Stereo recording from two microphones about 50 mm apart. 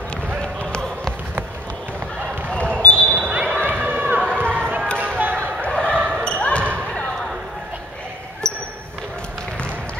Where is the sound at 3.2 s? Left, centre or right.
Right.